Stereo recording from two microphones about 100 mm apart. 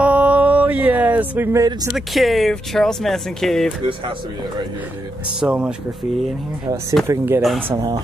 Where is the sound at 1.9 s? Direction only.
Centre (ahead or behind).